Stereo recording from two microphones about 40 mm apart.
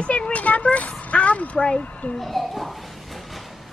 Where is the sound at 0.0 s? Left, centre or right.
Left.